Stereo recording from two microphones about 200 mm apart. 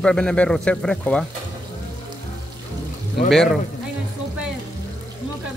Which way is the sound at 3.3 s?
Centre (ahead or behind).